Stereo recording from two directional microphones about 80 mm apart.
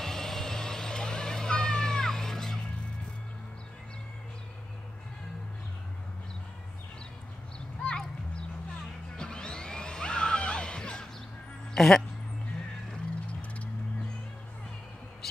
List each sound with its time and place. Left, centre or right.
0.0 s vehicle: centre
7.8 s clip-clop: centre
9.1 s music: centre
11.7 s speech: centre
13.3 s a sound: centre